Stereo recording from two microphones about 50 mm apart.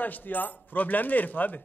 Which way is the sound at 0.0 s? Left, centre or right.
Left.